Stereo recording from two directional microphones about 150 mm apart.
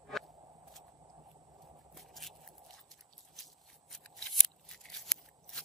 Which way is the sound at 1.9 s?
Centre (ahead or behind).